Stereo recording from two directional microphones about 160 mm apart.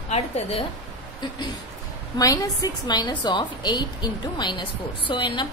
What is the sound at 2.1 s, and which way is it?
A woman's voice, 20° left (ahead or behind).